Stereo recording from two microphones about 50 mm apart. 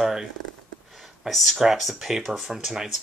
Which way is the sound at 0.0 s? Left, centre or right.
Centre.